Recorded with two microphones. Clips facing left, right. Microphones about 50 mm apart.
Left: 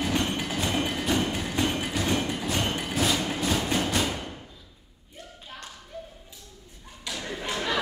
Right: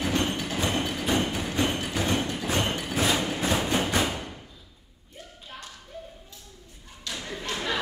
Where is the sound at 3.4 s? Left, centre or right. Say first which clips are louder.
Right 1 dB; centre.